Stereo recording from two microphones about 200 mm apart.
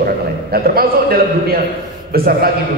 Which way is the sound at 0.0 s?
50° right (ahead or behind).